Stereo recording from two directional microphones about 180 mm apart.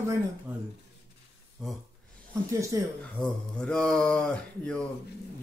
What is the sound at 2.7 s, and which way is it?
Speech, 20° right (ahead or behind).